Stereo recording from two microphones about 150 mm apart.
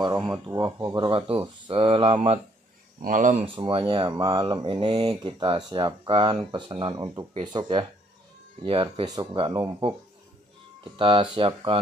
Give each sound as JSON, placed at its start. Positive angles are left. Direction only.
{"t": 0.6, "sound": "speech", "side_deg": -25}
{"t": 3.0, "sound": "speech", "side_deg": -60}
{"t": 3.4, "sound": "speech", "side_deg": -35}